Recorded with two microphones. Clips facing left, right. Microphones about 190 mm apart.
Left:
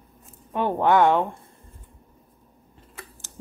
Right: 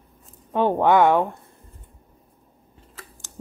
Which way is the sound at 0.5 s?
15° right (ahead or behind).